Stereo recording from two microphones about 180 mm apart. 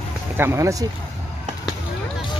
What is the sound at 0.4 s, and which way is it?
Speech, 15° right (ahead or behind).